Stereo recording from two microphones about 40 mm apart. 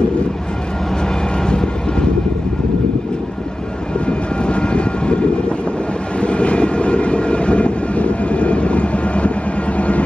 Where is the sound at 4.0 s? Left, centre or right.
Left.